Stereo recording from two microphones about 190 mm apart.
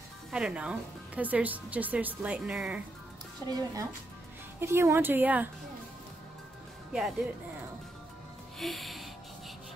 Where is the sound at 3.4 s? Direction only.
20° right (ahead or behind).